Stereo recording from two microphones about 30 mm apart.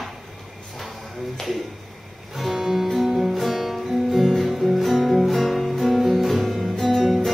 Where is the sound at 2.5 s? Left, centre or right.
Centre.